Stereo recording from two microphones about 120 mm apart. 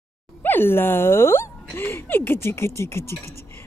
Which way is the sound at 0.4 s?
15° left (ahead or behind).